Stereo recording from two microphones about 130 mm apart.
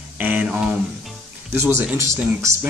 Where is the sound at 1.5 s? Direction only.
15° right (ahead or behind).